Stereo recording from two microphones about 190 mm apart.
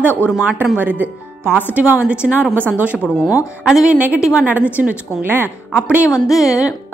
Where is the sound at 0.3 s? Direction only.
5° right (ahead or behind).